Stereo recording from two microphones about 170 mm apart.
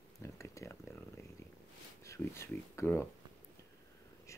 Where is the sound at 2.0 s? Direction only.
15° left (ahead or behind).